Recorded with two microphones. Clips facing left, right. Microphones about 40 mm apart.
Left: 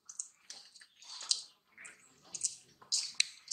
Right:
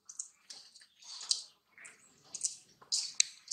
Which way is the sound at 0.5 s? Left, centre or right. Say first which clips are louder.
Left 1 dB; centre.